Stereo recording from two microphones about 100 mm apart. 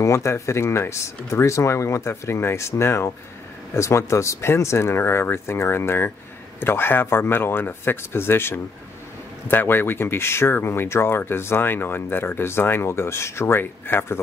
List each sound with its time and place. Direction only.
0.0 s speech: 30° left (ahead or behind)